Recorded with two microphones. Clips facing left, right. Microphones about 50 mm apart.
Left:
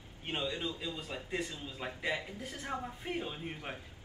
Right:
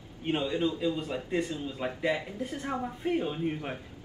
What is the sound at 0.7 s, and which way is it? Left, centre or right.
A man's voice, centre.